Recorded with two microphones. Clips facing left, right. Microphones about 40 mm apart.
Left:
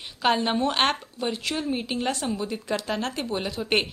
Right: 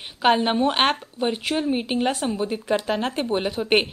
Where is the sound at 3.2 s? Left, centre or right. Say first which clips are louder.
Right 5 dB; right.